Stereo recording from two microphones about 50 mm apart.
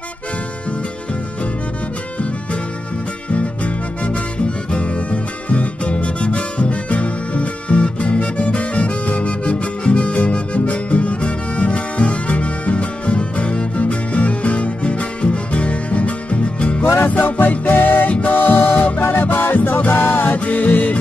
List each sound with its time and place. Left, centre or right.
3.3 s music: left
17.0 s music: left
19.9 s music: left
20.3 s music: left